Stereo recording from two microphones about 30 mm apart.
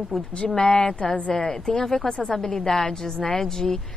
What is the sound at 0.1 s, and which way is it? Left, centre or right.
Speech, centre.